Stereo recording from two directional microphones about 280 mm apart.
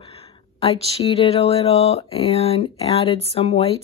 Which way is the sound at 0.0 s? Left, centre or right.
Left.